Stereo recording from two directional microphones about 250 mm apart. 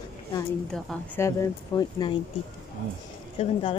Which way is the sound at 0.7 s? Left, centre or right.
Centre.